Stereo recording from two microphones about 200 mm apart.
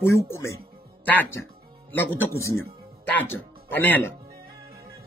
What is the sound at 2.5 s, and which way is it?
Music, 90° left.